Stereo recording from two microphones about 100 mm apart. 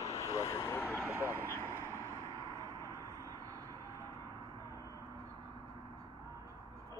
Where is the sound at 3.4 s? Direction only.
40° right (ahead or behind).